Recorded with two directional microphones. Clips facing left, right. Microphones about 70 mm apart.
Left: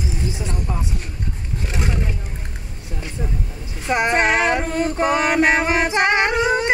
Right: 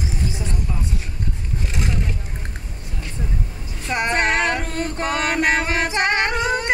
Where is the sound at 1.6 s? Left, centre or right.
Centre.